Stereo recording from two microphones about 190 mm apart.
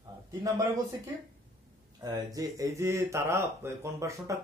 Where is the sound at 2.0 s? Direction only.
20° right (ahead or behind).